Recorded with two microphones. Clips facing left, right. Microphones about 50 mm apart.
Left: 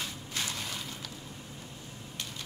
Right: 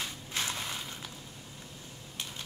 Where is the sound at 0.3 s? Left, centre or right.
Right.